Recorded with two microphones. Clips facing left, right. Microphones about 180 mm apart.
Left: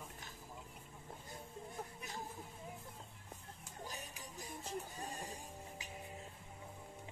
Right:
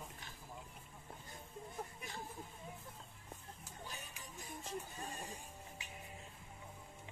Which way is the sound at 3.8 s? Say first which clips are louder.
Left 4 dB; 40° left (ahead or behind).